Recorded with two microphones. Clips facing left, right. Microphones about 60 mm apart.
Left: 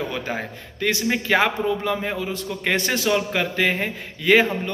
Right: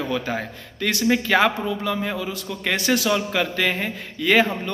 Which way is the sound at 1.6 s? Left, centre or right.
Left.